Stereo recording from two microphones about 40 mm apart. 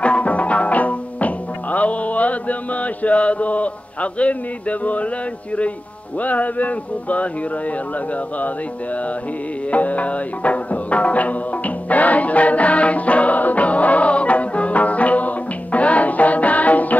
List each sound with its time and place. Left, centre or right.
0.0 s music: left
6.1 s music: left
9.7 s music: left